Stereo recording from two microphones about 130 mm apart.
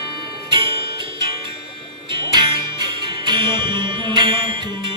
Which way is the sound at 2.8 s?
35° right (ahead or behind).